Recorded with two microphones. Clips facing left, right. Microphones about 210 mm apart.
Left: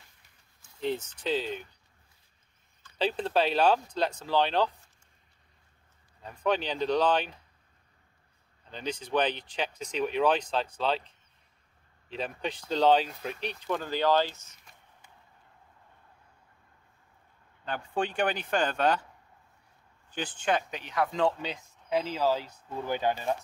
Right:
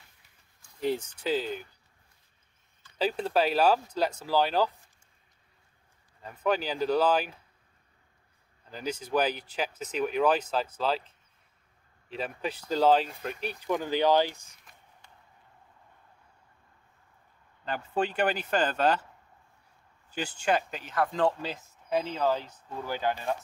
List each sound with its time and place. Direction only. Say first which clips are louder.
0.6 s speech: right 2 dB; 10° right (ahead or behind)
3.0 s speech: right 1 dB; 5° right (ahead or behind)
6.2 s speech: even; 5° right (ahead or behind)
8.6 s speech: right 1 dB; 5° right (ahead or behind)
17.6 s speech: right 1 dB; 5° right (ahead or behind)
20.1 s speech: right 1 dB; 10° right (ahead or behind); by 23.3 s 15° left (ahead or behind)